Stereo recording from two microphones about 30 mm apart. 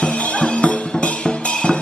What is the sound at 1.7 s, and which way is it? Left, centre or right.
Music, centre.